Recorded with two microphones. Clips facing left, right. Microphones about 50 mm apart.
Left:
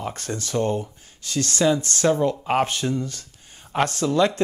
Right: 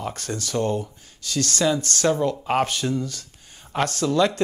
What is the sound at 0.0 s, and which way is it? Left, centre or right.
Speech, left.